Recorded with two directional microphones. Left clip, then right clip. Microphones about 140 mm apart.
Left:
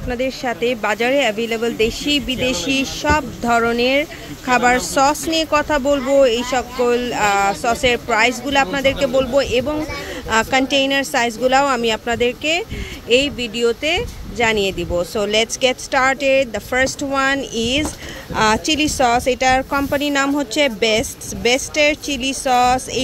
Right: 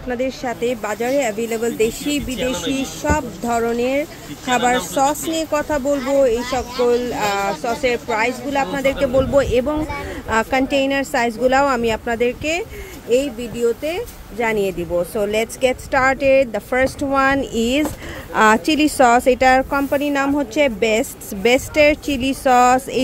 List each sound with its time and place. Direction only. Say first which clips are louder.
0.1 s speech: left 1 dB; 10° left (ahead or behind)
1.2 s speech: left 2 dB; 5° right (ahead or behind)
3.4 s speech: left 3 dB; 5° left (ahead or behind)
6.5 s speech: even; 10° left (ahead or behind)
9.1 s a woman's voice: right 1 dB; 20° right (ahead or behind)
19.7 s a woman's voice: even; 10° right (ahead or behind); by 22.8 s 30° right (ahead or behind)